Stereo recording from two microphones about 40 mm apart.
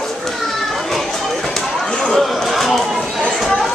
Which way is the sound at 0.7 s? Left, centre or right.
Centre.